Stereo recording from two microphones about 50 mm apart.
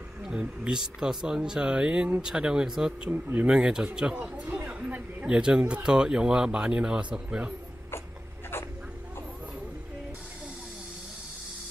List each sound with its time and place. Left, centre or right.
0.2 s speech: centre
4.1 s speech: right
4.6 s a sound: right
5.2 s speech: centre